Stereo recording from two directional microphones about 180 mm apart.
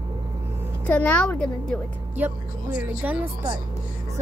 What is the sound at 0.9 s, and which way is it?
Speech, 10° left (ahead or behind).